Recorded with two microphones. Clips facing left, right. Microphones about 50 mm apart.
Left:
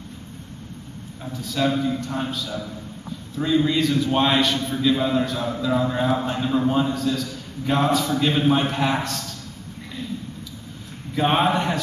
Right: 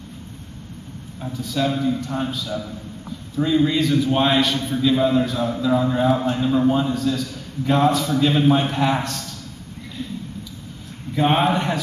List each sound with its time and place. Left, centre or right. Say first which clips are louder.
1.2 s a man's voice: even; centre
11.1 s a man's voice: right 1 dB; centre